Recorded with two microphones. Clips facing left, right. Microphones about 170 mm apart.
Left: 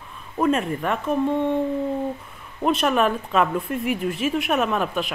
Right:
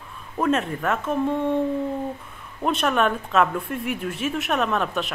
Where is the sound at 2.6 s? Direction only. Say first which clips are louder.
Left 2 dB; centre (ahead or behind).